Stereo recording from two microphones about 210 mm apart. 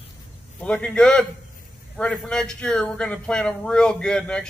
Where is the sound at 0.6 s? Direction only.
5° left (ahead or behind).